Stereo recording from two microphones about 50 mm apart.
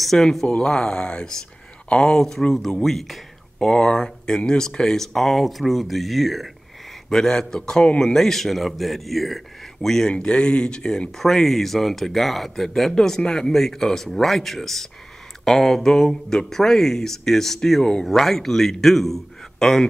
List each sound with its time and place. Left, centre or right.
0.0 s speech: centre
0.5 s speech: centre
3.7 s speech: centre
7.1 s a man's voice: centre